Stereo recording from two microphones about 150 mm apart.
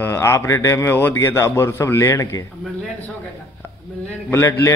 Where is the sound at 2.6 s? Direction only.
10° left (ahead or behind).